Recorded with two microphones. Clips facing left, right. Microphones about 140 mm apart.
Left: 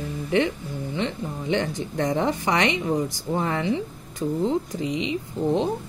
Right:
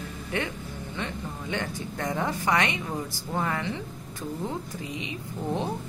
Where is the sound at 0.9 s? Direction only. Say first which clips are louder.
Left 6 dB; 25° left (ahead or behind).